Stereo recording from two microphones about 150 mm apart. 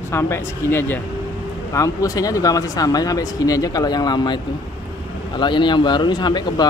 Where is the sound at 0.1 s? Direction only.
15° left (ahead or behind).